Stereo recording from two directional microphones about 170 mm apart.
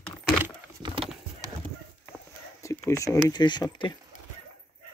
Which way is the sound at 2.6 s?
15° left (ahead or behind).